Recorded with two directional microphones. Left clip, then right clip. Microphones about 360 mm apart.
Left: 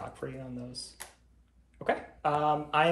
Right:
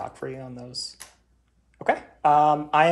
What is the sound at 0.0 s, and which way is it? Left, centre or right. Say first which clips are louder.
Speech: right 7 dB; centre.